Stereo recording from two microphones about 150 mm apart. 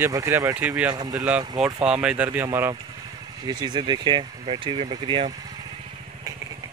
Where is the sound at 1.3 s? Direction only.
5° right (ahead or behind); by 5.3 s 30° right (ahead or behind).